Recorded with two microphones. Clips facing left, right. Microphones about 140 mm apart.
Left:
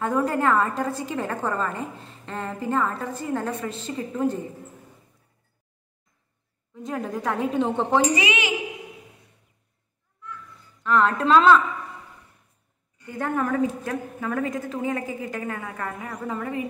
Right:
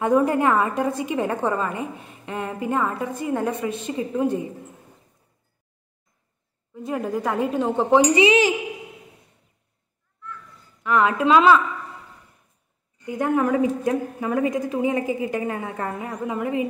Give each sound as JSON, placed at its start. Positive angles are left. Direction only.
{"t": 0.0, "sound": "a woman's voice", "side_deg": -15}
{"t": 6.7, "sound": "a woman's voice", "side_deg": -5}
{"t": 7.9, "sound": "a woman's voice", "side_deg": -25}
{"t": 10.8, "sound": "a woman's voice", "side_deg": -10}
{"t": 13.0, "sound": "a woman's voice", "side_deg": -15}